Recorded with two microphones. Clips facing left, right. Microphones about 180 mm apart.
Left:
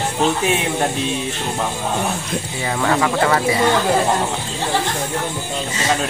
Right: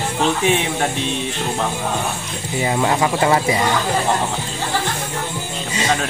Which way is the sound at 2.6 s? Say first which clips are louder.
Right 1 dB; 20° right (ahead or behind).